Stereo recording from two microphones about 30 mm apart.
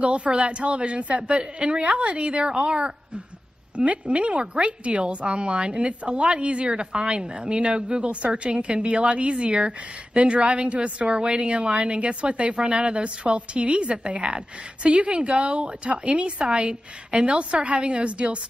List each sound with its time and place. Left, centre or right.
0.0 s a woman's voice: right
1.8 s a woman's voice: right